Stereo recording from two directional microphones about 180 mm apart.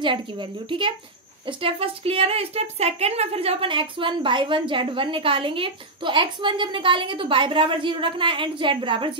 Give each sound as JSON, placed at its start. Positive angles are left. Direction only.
{"t": 0.7, "sound": "a woman's voice", "side_deg": -25}